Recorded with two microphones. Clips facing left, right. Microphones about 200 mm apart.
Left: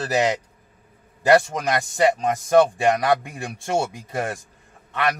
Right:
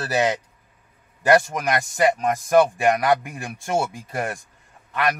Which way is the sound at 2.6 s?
25° left (ahead or behind).